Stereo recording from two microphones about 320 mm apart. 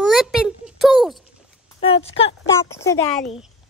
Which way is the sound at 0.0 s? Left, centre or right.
Centre.